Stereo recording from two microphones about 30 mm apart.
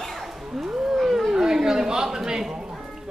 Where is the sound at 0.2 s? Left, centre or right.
Centre.